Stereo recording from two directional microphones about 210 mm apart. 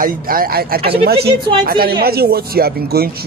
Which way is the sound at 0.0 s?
45° right (ahead or behind).